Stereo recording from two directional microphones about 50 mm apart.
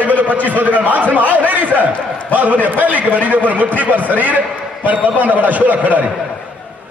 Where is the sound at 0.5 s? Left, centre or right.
Right.